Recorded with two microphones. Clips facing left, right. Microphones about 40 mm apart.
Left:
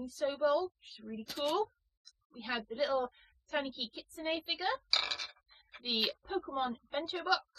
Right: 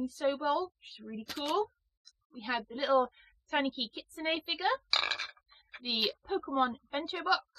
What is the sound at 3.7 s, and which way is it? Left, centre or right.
Speech, right.